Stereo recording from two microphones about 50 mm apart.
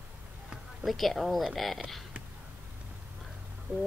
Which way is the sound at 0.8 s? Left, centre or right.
Centre.